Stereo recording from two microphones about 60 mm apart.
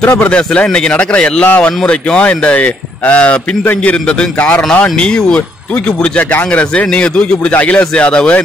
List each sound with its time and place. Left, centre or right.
0.3 s speech: centre
4.4 s speech: left